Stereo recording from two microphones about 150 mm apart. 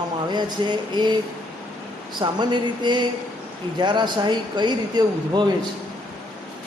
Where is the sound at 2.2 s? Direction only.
30° right (ahead or behind).